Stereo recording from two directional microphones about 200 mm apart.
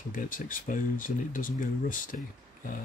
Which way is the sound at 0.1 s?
45° left (ahead or behind).